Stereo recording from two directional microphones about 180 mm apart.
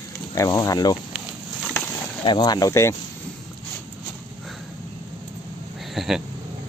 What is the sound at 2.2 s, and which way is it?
Speech, 25° left (ahead or behind).